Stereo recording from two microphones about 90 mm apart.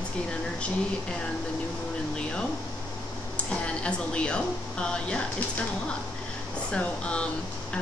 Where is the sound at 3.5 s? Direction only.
10° left (ahead or behind).